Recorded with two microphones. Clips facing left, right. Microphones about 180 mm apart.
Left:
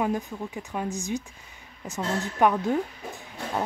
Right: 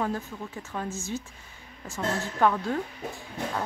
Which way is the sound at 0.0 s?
15° left (ahead or behind).